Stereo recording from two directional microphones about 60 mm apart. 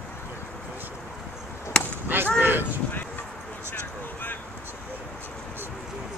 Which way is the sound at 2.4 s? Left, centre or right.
Right.